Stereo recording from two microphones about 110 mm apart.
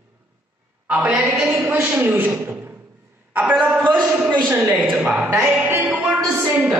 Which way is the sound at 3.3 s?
15° right (ahead or behind).